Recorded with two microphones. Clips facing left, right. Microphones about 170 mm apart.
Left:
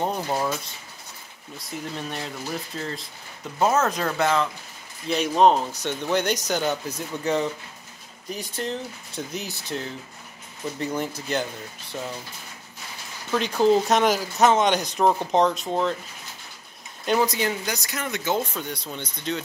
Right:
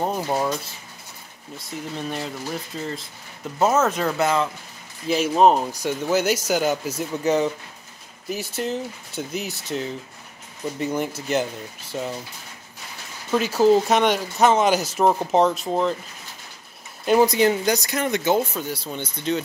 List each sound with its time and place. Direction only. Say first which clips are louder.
0.0 s speech: right 2 dB; 10° right (ahead or behind)
1.6 s speech: right 2 dB; centre (ahead or behind)
10.9 s speech: right 4 dB; 5° right (ahead or behind)
11.9 s speech: right 4 dB; 20° right (ahead or behind)
13.3 s speech: right 3 dB; 5° right (ahead or behind)
17.2 s speech: right 6 dB; 30° right (ahead or behind)
18.3 s speech: right 4 dB; 5° right (ahead or behind)